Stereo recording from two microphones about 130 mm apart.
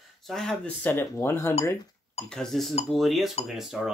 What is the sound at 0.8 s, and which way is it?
Speech, 15° left (ahead or behind).